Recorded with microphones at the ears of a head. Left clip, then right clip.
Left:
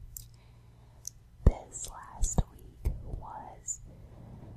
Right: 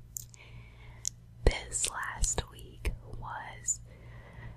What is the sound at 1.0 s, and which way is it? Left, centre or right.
Whispering, right.